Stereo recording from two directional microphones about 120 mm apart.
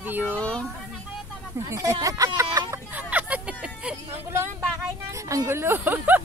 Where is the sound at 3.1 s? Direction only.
10° right (ahead or behind).